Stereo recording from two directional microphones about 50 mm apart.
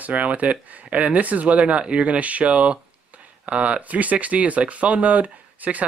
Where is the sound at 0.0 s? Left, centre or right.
Right.